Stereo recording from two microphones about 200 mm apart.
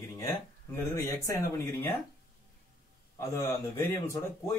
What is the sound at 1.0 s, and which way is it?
Speech, 15° left (ahead or behind).